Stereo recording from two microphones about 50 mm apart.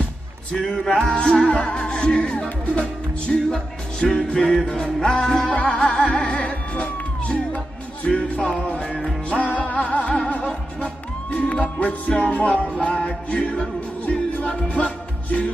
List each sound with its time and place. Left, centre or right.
0.6 s music: centre
2.6 s speech: left
4.0 s music: centre